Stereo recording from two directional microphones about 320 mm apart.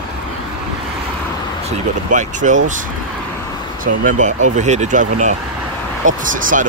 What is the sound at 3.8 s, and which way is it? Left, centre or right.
Speech, right.